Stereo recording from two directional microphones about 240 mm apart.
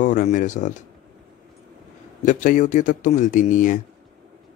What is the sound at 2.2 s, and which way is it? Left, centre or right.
Speech, left.